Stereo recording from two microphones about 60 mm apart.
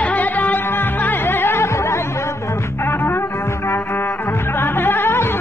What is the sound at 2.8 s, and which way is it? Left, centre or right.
Music, left.